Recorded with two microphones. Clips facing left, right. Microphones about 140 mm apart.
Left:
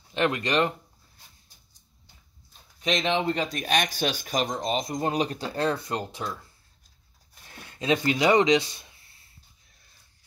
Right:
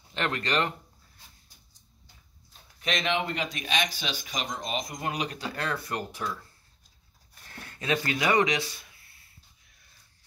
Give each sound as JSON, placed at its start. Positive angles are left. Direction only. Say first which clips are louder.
{"t": 0.1, "sound": "speech", "louder": "left 4 dB", "side_deg": 15}
{"t": 2.8, "sound": "speech", "louder": "left 3 dB", "side_deg": 20}
{"t": 3.6, "sound": "speech", "louder": "left 6 dB", "side_deg": 50}
{"t": 4.6, "sound": "speech", "louder": "left 6 dB", "side_deg": 30}
{"t": 7.5, "sound": "speech", "louder": "left 4 dB", "side_deg": 20}